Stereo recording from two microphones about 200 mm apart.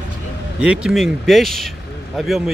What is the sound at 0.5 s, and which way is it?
Speech, 5° right (ahead or behind).